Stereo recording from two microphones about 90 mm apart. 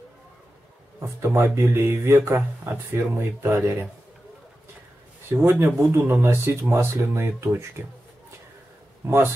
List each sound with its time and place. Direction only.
0.9 s speech: 30° right (ahead or behind)
5.3 s speech: 25° right (ahead or behind)
9.0 s speech: 25° right (ahead or behind)